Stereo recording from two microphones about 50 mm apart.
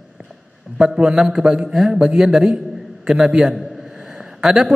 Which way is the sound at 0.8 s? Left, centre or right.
Centre.